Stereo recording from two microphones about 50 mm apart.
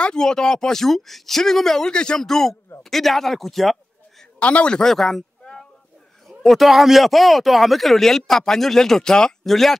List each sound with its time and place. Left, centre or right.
0.0 s speech: centre
4.4 s a man's voice: left
4.7 s speech: centre
5.4 s a sound: centre
6.2 s speech: centre